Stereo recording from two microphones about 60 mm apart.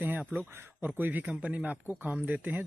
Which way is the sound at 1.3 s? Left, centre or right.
Right.